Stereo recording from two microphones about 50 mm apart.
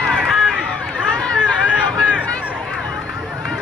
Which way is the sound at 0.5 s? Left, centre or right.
Centre.